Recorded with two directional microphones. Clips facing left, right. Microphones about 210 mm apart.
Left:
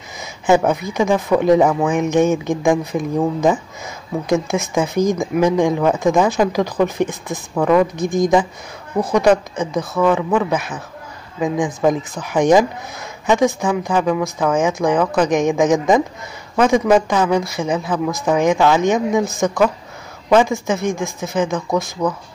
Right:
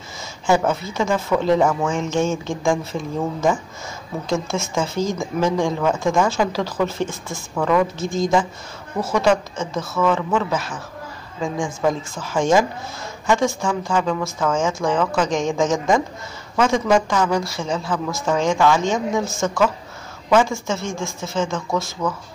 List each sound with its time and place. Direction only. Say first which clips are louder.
0.5 s speech: left 4 dB; 15° left (ahead or behind)